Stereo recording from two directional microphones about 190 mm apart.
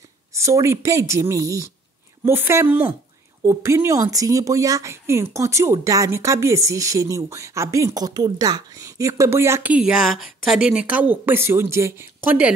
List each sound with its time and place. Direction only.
0.3 s speech: 15° right (ahead or behind)